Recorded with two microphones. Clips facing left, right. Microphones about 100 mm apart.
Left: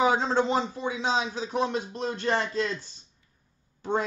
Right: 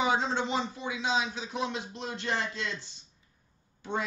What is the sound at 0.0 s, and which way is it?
Speech, 40° left (ahead or behind).